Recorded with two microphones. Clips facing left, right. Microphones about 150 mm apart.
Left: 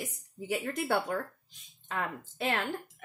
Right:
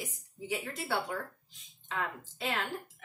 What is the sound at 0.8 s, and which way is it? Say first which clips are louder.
A woman's voice: left 5 dB; 50° left (ahead or behind).